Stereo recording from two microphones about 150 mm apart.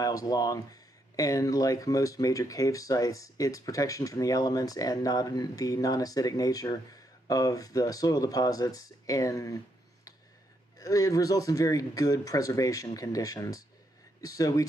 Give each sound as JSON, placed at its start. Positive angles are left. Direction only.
{"t": 0.0, "sound": "speech", "side_deg": 25}
{"t": 10.8, "sound": "speech", "side_deg": 25}